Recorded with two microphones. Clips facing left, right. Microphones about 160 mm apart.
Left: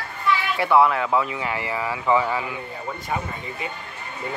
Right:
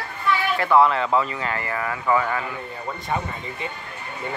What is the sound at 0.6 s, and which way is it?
Speech, 10° left (ahead or behind).